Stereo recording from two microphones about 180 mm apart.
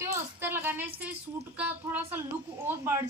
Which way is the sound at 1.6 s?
10° right (ahead or behind).